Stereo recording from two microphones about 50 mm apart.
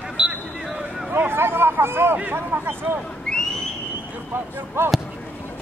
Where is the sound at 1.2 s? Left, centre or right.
Right.